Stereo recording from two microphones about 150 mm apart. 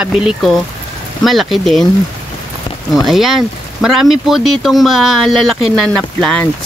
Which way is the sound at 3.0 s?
Centre (ahead or behind).